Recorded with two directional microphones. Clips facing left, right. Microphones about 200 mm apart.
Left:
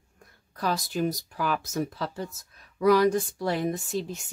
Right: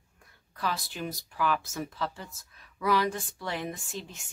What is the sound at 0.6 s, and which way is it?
Speech, 40° left (ahead or behind).